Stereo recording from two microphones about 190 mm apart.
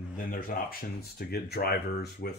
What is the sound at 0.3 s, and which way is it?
Speech, 50° left (ahead or behind).